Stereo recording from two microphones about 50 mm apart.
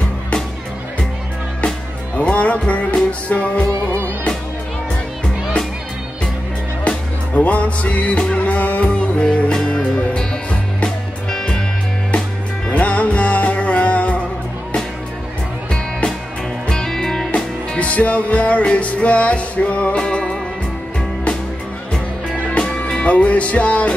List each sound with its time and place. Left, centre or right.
2.1 s music: left
7.3 s music: left
11.2 s music: centre
12.7 s music: left
16.6 s music: centre
17.7 s music: left
22.5 s music: left